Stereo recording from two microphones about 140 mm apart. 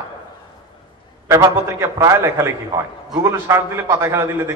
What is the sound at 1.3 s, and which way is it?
A man's voice, 20° right (ahead or behind).